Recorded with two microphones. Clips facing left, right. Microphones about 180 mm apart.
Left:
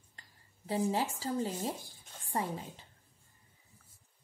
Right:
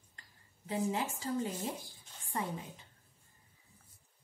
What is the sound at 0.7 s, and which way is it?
Speech, 30° left (ahead or behind).